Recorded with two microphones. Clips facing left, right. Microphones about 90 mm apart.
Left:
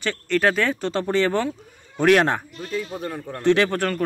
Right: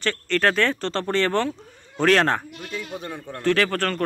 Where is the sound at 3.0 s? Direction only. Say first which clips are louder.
Left 3 dB; centre (ahead or behind).